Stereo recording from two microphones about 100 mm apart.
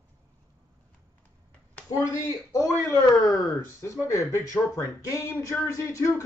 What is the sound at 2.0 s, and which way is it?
Speech, 35° left (ahead or behind).